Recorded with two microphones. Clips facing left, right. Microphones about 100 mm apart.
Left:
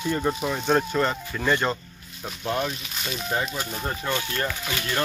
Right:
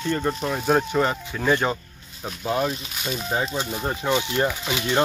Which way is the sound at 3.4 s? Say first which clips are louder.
Right 3 dB; 25° right (ahead or behind).